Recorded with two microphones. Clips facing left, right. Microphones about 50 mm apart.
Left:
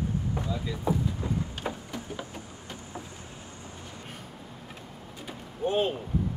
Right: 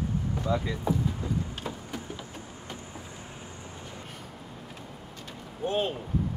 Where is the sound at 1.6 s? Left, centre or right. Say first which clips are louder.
Left 3 dB; left.